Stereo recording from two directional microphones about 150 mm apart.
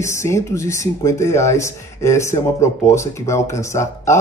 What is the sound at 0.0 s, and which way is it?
Speech, 20° left (ahead or behind).